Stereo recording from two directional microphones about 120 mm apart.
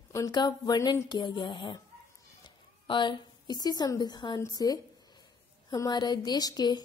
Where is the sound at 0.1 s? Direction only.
30° left (ahead or behind).